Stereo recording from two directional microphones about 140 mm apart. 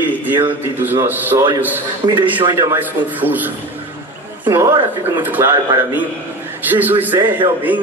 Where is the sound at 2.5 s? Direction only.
20° right (ahead or behind).